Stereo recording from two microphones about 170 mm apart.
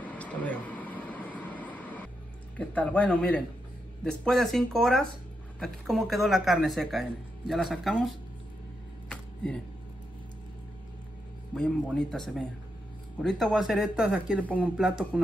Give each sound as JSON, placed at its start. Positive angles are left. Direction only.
{"t": 0.0, "sound": "vehicle", "side_deg": 10}
{"t": 2.5, "sound": "speech", "side_deg": 10}
{"t": 9.1, "sound": "a sound", "side_deg": 5}
{"t": 11.5, "sound": "speech", "side_deg": 5}
{"t": 14.4, "sound": "speech", "side_deg": 10}
{"t": 14.8, "sound": "speech", "side_deg": -5}